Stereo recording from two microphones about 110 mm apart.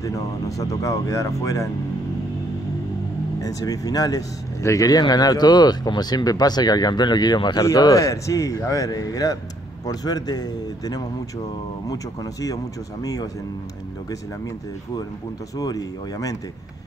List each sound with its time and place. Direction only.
0.0 s speech: 30° left (ahead or behind)
3.3 s speech: 35° left (ahead or behind)
15.5 s speech: 35° left (ahead or behind)